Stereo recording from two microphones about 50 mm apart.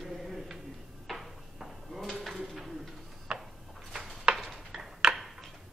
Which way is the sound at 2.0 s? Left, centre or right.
Centre.